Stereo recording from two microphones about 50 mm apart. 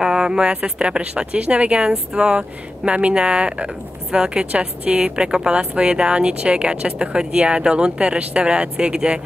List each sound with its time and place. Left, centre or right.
0.0 s speech: centre